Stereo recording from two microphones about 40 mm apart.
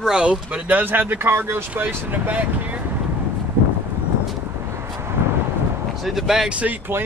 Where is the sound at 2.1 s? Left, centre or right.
Right.